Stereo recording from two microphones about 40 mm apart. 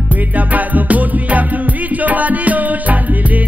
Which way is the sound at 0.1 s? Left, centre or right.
Right.